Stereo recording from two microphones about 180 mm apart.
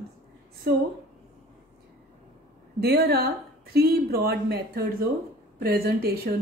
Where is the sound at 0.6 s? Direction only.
60° right (ahead or behind).